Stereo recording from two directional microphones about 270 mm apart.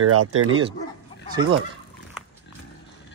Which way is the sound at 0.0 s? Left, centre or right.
Right.